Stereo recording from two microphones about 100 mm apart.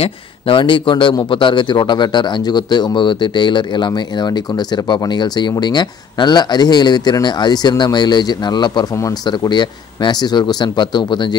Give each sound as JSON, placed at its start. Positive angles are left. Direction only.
{"t": 0.0, "sound": "a man's voice", "side_deg": 60}